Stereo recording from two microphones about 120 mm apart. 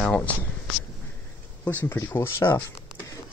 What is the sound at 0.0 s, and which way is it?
Speech, 10° left (ahead or behind).